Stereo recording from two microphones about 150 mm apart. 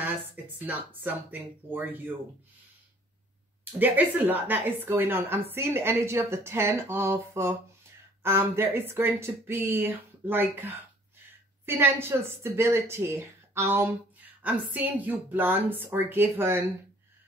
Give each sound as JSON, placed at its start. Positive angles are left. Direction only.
{"t": 0.7, "sound": "a woman's voice", "side_deg": -10}
{"t": 3.8, "sound": "a woman's voice", "side_deg": -10}